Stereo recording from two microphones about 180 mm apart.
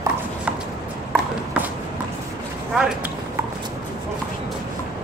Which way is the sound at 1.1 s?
5° right (ahead or behind).